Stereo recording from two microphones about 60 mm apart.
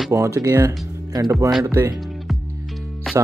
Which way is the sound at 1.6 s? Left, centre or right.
Right.